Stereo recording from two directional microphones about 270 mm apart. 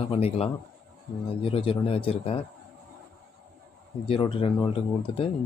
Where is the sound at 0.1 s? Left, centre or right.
Left.